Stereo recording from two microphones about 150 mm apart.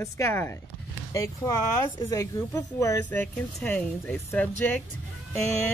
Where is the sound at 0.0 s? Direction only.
15° left (ahead or behind).